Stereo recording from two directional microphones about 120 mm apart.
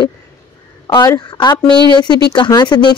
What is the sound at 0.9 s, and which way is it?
Speech, 30° left (ahead or behind).